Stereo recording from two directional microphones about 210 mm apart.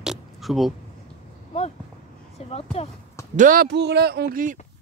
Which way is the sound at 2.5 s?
30° left (ahead or behind).